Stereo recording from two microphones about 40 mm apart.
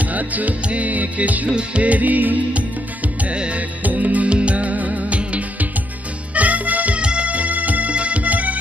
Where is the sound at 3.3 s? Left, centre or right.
Right.